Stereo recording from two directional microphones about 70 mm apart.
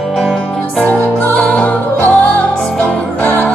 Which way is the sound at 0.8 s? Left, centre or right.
Left.